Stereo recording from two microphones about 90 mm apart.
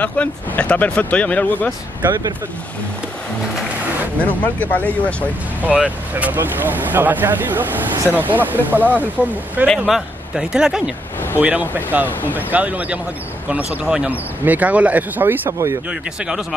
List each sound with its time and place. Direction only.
0.0 s speech: 15° left (ahead or behind)
4.3 s speech: 20° left (ahead or behind)
5.6 s speech: 15° right (ahead or behind)
9.8 s speech: 5° right (ahead or behind)
11.3 s speech: 20° right (ahead or behind)
15.9 s speech: 10° right (ahead or behind)